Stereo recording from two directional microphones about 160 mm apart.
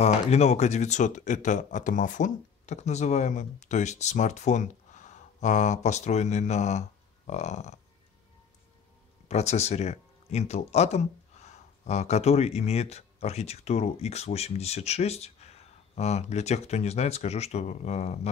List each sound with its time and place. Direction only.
0.0 s speech: 40° left (ahead or behind)
9.3 s speech: 45° left (ahead or behind)